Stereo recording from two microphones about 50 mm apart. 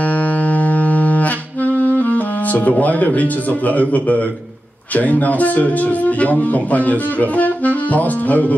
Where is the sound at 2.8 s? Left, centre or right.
Left.